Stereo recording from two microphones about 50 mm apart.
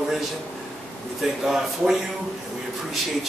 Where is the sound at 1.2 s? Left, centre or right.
Centre.